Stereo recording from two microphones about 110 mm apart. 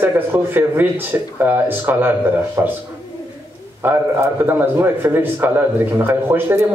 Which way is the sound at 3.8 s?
20° right (ahead or behind).